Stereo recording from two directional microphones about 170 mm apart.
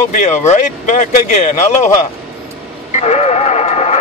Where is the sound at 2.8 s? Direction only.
40° left (ahead or behind).